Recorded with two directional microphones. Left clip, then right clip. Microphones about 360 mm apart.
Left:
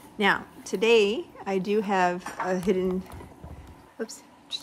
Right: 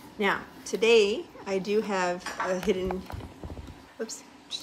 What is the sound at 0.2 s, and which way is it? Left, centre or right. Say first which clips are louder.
Speech: left 4 dB; left.